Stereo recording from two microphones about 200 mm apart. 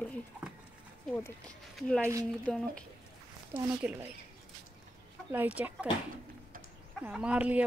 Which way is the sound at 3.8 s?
10° right (ahead or behind).